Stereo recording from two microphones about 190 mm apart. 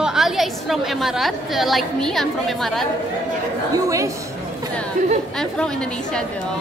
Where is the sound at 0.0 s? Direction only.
Centre (ahead or behind).